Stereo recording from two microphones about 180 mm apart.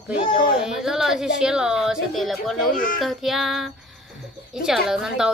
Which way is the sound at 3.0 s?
Centre (ahead or behind).